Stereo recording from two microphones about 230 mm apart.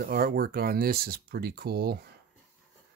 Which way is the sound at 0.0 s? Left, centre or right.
Right.